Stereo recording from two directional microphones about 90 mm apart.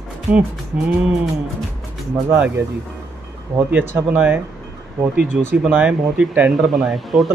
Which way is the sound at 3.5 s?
25° right (ahead or behind).